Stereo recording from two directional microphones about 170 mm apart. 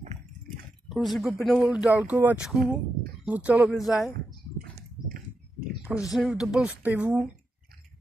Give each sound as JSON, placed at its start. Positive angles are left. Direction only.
{"t": 0.8, "sound": "speech", "side_deg": 0}
{"t": 4.6, "sound": "a sound", "side_deg": -60}
{"t": 5.7, "sound": "speech", "side_deg": -5}